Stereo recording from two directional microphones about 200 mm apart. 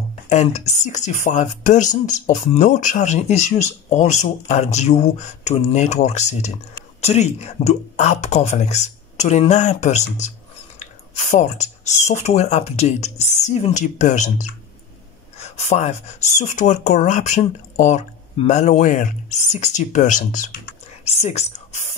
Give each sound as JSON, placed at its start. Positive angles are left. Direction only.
{"t": 0.3, "sound": "speech", "side_deg": 35}